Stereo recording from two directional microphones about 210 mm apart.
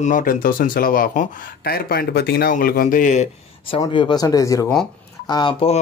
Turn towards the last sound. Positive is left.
turn(degrees=25)  # may be behind; listen again after turning